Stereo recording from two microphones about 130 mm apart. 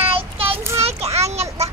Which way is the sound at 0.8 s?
50° right (ahead or behind).